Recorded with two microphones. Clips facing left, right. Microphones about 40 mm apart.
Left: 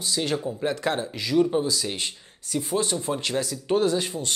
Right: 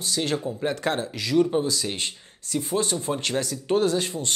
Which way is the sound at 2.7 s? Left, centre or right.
Centre.